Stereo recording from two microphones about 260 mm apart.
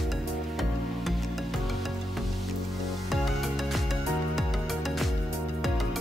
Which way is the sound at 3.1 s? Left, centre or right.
Centre.